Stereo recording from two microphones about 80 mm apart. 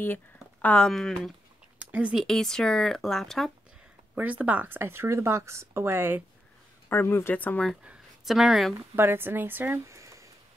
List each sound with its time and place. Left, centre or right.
0.0 s speech: left; by 1.3 s centre
1.9 s speech: centre
2.1 s speech: centre
4.1 s speech: centre
6.9 s speech: left
7.3 s speech: centre
8.3 s speech: centre
8.9 s speech: right
9.8 s a sound: right